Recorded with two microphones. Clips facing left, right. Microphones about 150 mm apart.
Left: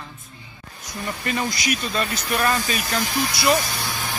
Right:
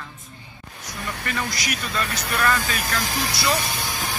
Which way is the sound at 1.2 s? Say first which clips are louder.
Left 4 dB; 25° left (ahead or behind).